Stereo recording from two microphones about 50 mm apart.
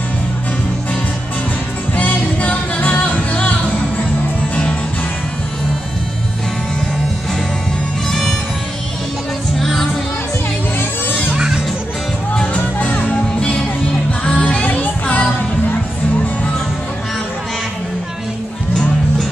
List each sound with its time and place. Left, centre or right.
2.0 s music: left
8.1 s music: centre
9.6 s music: centre
11.1 s music: left
11.3 s music: centre
12.4 s music: left
12.9 s music: left
13.4 s music: left